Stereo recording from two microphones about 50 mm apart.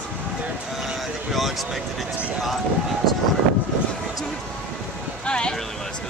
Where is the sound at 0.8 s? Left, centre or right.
Centre.